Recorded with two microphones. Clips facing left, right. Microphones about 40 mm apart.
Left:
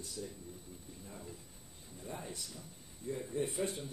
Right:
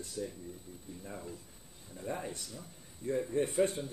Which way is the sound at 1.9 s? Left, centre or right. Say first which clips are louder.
Right 6 dB; right.